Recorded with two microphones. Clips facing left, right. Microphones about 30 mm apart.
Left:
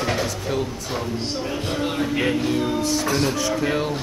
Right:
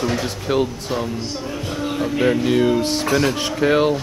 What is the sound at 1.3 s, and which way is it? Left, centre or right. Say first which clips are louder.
Music: left 1 dB; centre.